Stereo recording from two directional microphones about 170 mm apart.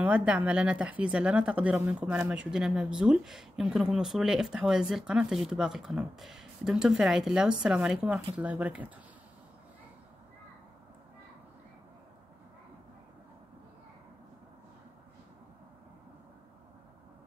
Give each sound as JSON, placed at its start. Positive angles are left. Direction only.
{"t": 0.0, "sound": "speech", "side_deg": -10}